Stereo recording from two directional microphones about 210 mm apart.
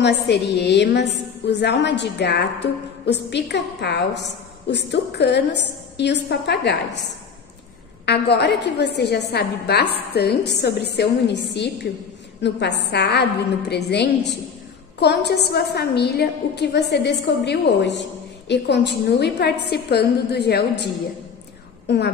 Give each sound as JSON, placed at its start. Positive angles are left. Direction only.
{"t": 0.0, "sound": "a woman's voice", "side_deg": 55}
{"t": 8.0, "sound": "a woman's voice", "side_deg": 50}